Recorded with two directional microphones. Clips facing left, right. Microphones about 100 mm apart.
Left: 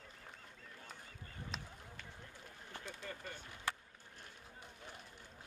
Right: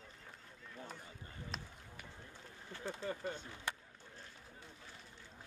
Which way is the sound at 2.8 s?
20° right (ahead or behind).